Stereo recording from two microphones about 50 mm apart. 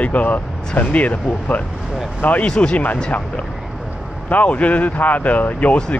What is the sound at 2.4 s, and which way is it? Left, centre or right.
Speech, centre.